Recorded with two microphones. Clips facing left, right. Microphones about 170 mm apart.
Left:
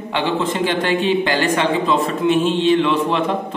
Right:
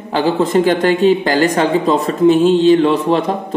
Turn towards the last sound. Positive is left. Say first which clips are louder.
# right 3 dB
turn(degrees=-35)  # may be behind; listen again after turning